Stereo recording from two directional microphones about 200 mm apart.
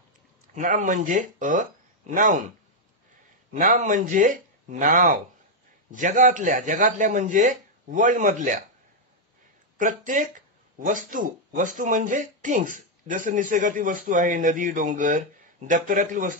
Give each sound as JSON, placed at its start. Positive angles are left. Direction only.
{"t": 0.6, "sound": "speech", "side_deg": -40}
{"t": 3.5, "sound": "speech", "side_deg": -40}
{"t": 9.8, "sound": "speech", "side_deg": -40}